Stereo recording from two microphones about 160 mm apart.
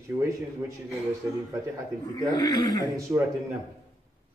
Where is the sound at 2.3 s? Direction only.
25° left (ahead or behind).